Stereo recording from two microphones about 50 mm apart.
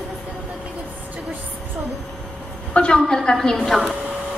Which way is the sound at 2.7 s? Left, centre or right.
Left.